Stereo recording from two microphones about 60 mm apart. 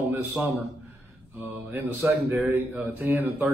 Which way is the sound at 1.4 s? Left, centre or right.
Right.